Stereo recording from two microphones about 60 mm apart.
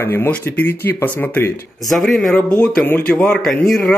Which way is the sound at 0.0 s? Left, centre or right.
Left.